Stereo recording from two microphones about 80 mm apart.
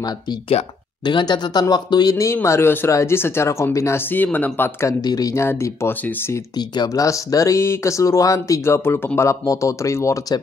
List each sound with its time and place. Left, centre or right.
1.0 s speech: left
2.4 s speech: left
4.1 s speech: left
4.8 s speech: left
5.3 s speech: left
7.0 s speech: left